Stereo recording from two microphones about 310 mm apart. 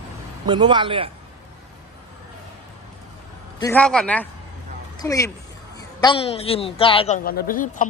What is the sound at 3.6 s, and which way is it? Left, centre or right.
A man's voice, centre.